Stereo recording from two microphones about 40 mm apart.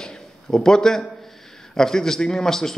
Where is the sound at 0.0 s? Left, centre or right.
Centre.